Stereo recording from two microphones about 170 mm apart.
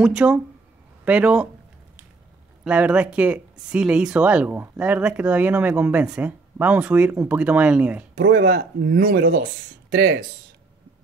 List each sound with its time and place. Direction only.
0.0 s speech: 5° right (ahead or behind)
2.6 s speech: 5° right (ahead or behind)
8.2 s speech: 80° right